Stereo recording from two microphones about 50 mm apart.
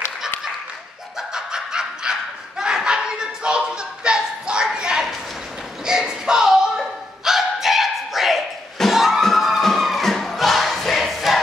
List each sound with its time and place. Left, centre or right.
1.1 s snicker: centre
4.7 s a sound: centre
5.9 s bow-wow: centre
8.7 s crowd: centre